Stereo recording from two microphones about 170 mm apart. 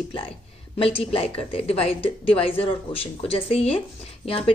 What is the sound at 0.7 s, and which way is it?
Speech, 35° left (ahead or behind).